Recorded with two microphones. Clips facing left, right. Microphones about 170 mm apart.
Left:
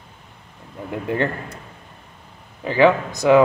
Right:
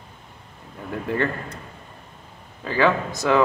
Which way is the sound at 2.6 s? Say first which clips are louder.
Left 5 dB; 15° left (ahead or behind).